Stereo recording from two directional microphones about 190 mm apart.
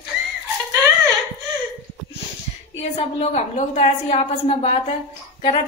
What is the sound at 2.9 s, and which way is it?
A woman's voice, 35° left (ahead or behind).